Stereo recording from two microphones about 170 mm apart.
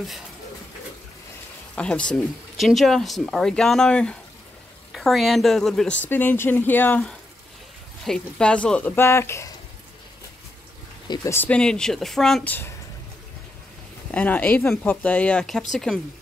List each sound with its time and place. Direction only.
1.8 s speech: 5° left (ahead or behind)
11.1 s speech: 15° left (ahead or behind)
14.1 s speech: 10° left (ahead or behind)